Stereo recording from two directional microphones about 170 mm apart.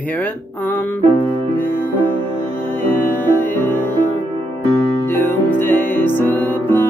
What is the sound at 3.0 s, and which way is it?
Music, 10° left (ahead or behind).